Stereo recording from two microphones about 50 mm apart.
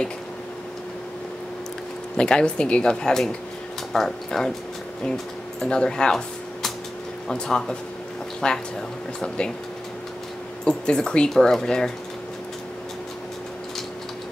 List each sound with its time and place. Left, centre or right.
2.1 s speech: centre
7.2 s speech: centre
10.6 s speech: centre